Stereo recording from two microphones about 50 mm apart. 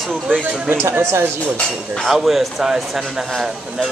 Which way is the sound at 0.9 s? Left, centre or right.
Right.